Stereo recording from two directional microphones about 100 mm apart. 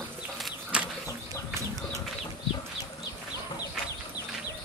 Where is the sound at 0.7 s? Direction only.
10° right (ahead or behind).